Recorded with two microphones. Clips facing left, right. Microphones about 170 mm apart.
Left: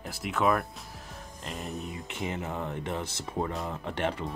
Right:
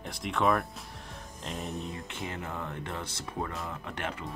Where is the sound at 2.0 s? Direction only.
20° left (ahead or behind).